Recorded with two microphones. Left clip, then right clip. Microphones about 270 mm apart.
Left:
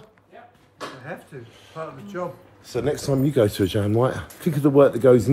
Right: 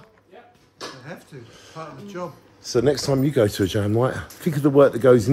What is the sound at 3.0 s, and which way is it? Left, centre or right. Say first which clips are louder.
A man's voice: even; centre.